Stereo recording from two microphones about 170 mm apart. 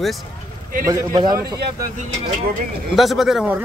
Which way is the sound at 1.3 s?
65° right (ahead or behind).